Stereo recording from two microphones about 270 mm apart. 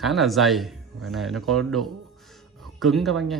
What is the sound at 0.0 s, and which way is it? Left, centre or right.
A man's voice, centre.